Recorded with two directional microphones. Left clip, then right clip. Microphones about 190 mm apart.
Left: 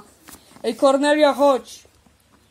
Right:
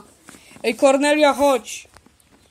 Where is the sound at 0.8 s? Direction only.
20° right (ahead or behind).